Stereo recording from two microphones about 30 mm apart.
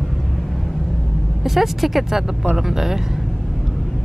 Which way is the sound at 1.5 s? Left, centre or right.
Centre.